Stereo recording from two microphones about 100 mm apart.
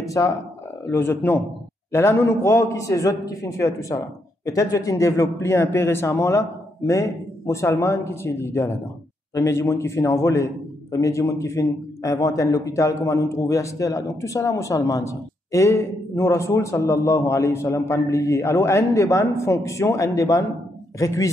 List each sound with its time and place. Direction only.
0.0 s a man's voice: 30° left (ahead or behind)